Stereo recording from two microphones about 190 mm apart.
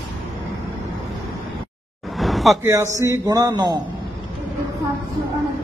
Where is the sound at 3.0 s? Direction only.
15° right (ahead or behind).